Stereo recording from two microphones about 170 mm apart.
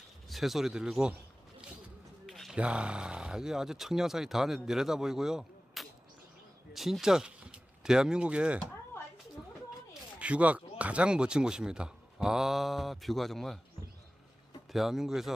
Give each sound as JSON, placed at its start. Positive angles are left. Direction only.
{"t": 0.3, "sound": "speech", "side_deg": 0}
{"t": 2.2, "sound": "speech", "side_deg": 0}
{"t": 10.1, "sound": "speech", "side_deg": -5}
{"t": 14.7, "sound": "speech", "side_deg": 0}